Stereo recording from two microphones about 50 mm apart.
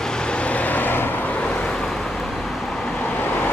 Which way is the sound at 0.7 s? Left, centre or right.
Left.